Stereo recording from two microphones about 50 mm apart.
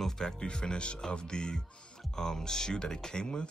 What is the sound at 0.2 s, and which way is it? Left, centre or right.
Speech, centre.